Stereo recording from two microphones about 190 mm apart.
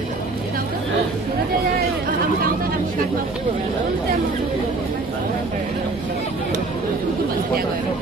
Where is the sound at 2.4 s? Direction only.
50° right (ahead or behind).